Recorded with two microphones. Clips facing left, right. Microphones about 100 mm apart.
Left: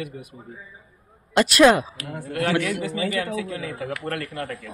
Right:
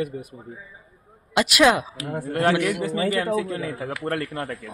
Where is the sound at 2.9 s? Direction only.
40° right (ahead or behind).